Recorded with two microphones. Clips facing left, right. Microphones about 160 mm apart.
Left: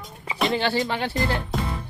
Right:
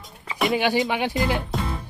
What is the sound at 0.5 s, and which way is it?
Speech, 15° right (ahead or behind).